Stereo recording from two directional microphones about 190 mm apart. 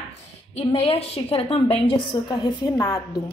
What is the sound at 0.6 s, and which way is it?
A woman's voice, 30° left (ahead or behind).